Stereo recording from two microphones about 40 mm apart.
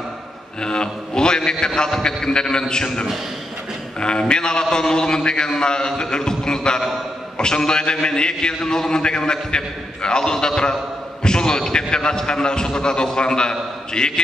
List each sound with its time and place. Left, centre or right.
0.6 s a man's voice: left